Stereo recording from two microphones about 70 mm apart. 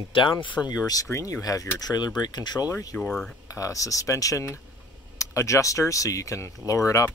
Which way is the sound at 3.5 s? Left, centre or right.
Left.